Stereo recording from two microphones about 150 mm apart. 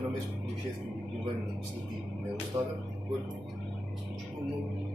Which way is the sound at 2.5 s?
20° right (ahead or behind).